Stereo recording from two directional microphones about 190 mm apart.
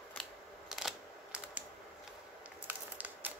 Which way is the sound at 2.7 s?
10° right (ahead or behind).